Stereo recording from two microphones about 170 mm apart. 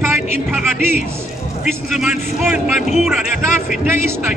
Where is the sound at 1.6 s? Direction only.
5° right (ahead or behind).